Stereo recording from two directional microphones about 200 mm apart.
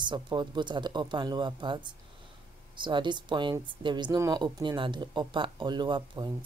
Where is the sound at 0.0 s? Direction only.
20° right (ahead or behind).